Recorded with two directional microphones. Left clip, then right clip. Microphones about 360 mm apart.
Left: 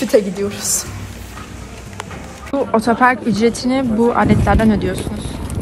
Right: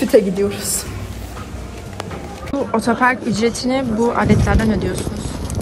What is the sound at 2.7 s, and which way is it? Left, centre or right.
Speech, centre.